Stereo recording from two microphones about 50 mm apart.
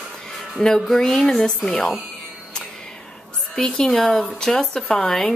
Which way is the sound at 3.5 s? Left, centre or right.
Centre.